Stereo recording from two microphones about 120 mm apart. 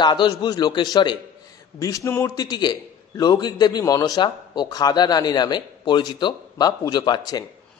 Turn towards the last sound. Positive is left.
turn(degrees=35)  # may be behind; listen again after turning